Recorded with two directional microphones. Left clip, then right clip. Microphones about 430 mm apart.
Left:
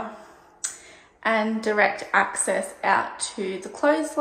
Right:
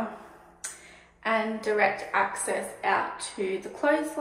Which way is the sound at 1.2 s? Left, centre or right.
Centre.